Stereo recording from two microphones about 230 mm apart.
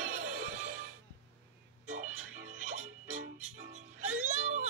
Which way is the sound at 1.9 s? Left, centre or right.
Right.